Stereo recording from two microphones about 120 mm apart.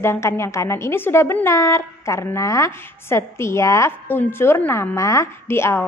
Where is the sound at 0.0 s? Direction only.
20° left (ahead or behind).